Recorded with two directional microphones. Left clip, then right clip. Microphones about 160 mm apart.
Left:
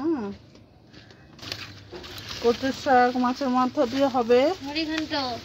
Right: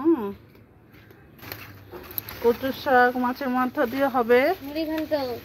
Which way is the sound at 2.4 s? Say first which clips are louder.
Right 1 dB; 5° right (ahead or behind).